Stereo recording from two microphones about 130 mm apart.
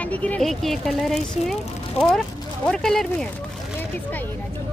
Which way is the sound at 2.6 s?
5° left (ahead or behind).